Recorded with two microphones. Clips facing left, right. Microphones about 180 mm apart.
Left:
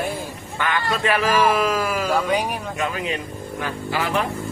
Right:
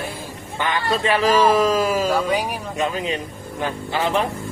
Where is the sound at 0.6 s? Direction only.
25° right (ahead or behind).